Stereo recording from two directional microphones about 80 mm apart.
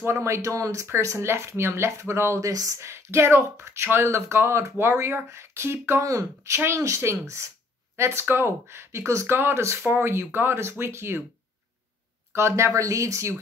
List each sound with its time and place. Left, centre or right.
0.0 s speech: right
12.4 s speech: right